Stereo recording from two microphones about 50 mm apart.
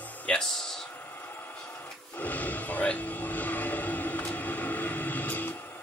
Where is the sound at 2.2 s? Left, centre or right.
Left.